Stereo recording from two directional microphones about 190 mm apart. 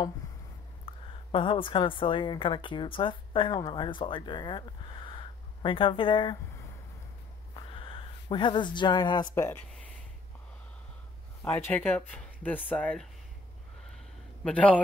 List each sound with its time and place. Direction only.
0.8 s a woman's voice: 25° left (ahead or behind)
7.5 s speech: 25° left (ahead or behind)
11.4 s speech: 10° left (ahead or behind)
13.9 s a sound: 5° left (ahead or behind)